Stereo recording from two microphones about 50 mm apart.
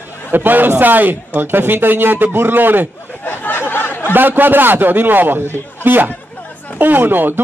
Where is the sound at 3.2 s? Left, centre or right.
Left.